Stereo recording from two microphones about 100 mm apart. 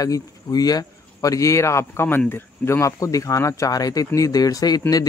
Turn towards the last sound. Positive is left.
turn(degrees=40)  # may be behind; listen again after turning